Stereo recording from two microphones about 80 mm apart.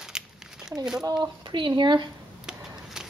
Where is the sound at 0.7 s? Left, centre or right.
Centre.